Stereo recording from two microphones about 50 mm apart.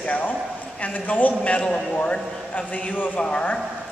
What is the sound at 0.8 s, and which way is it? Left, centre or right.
Speech, left.